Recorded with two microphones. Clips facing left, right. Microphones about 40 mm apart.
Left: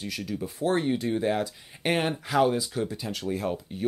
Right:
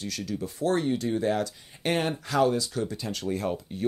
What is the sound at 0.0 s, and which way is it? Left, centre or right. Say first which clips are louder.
Speech: even; centre.